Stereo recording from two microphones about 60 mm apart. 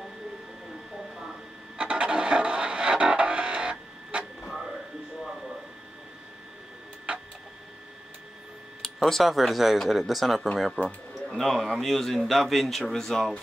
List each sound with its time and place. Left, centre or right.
1.8 s music: centre
8.8 s speech: centre
10.8 s speech: centre
11.2 s speech: centre